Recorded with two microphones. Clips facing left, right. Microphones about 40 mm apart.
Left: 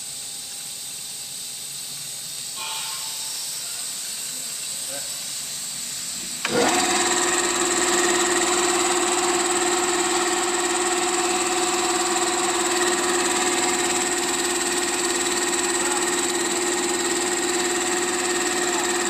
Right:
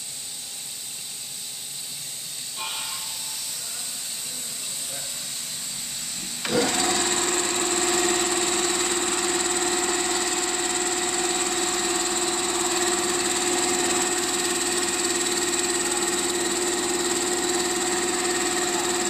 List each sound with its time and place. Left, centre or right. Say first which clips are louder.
6.7 s sewing machine: left 3 dB; left
7.0 s lawn mower: left 3 dB; left
7.5 s engine: left 3 dB; left
14.0 s lawn mower: left 2 dB; centre
14.9 s engine: left 2 dB; centre